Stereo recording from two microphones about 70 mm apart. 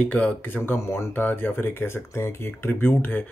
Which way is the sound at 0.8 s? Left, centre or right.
Left.